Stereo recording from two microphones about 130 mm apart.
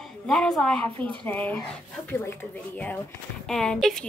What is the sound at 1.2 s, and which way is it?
Speech, 15° left (ahead or behind).